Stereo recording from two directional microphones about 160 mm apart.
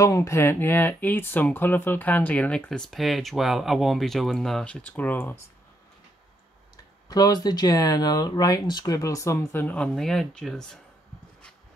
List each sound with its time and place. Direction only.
0.0 s speech: 20° left (ahead or behind)
7.1 s speech: 25° left (ahead or behind); by 10.8 s 5° left (ahead or behind)